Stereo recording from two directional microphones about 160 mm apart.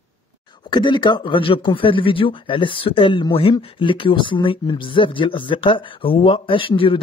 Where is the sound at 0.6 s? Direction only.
30° left (ahead or behind).